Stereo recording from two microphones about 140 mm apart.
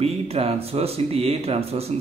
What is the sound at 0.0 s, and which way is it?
Speech, 45° right (ahead or behind).